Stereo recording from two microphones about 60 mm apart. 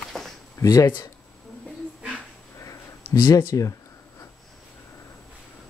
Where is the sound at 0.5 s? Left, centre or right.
Left.